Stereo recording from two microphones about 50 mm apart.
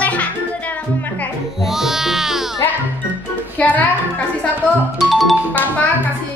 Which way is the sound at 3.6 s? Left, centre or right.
Left.